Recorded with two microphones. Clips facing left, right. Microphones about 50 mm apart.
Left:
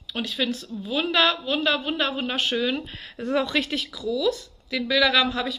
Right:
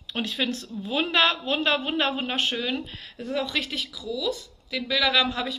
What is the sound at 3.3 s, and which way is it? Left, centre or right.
A woman's voice, centre.